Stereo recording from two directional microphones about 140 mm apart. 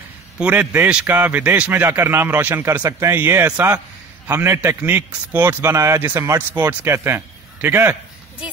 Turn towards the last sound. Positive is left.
turn(degrees=-15)  # may be behind; listen again after turning